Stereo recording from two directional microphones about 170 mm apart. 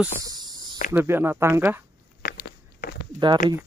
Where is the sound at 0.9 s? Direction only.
15° right (ahead or behind).